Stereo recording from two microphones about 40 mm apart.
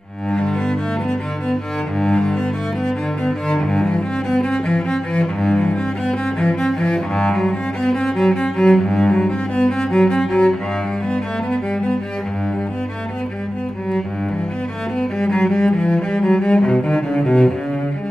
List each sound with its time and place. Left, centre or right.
0.3 s cello: centre
1.5 s music: centre
3.4 s cello: centre
4.4 s music: centre
5.2 s cello: centre
11.5 s music: left
15.0 s cello: centre